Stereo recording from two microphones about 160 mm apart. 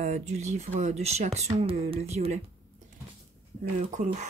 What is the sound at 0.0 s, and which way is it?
Speech, 45° right (ahead or behind).